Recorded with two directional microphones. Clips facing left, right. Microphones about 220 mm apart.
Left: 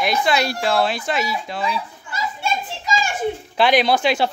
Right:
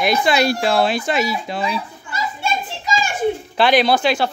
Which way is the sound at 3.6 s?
15° left (ahead or behind).